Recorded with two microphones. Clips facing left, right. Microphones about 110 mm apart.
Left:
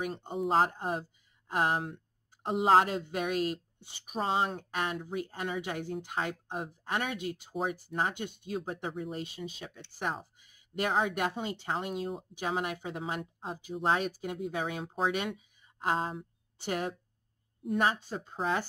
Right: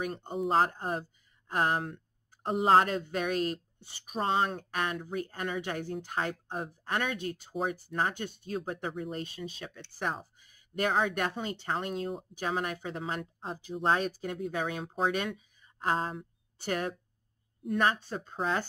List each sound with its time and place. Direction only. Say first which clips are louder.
0.2 s speech: even; centre (ahead or behind)
0.7 s speech: even; 10° left (ahead or behind)
16.6 s speech: right 1 dB; 15° left (ahead or behind)